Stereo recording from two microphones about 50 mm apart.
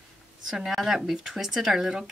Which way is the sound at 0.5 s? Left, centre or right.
Centre.